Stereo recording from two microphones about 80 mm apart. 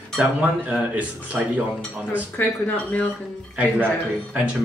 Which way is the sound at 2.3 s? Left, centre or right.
Centre.